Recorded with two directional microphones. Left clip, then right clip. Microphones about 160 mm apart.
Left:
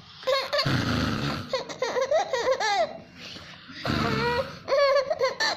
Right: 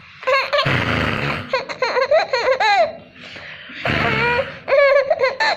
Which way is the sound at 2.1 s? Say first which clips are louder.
Right 8 dB; 20° left (ahead or behind).